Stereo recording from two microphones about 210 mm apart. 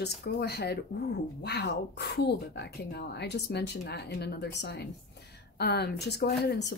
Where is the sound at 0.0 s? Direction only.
50° left (ahead or behind).